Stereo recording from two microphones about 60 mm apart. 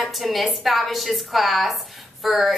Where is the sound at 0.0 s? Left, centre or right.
Centre.